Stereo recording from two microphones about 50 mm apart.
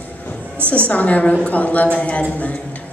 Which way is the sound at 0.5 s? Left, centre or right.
Right.